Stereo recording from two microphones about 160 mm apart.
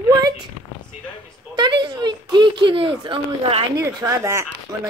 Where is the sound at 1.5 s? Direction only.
30° right (ahead or behind).